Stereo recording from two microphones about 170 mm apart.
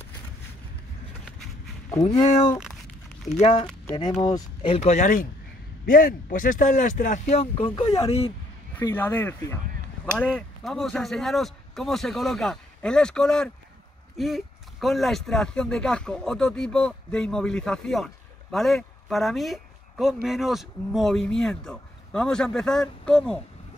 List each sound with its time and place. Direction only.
3.3 s speech: 35° left (ahead or behind)
4.2 s speech: 25° left (ahead or behind)
4.7 s speech: 45° left (ahead or behind)
8.9 s speech: 10° left (ahead or behind)